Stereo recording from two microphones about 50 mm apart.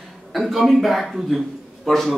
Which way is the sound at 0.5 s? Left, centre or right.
Centre.